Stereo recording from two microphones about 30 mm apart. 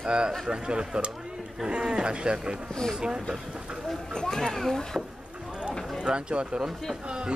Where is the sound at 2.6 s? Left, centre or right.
Centre.